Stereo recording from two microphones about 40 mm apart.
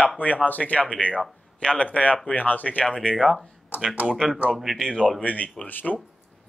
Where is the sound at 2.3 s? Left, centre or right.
Left.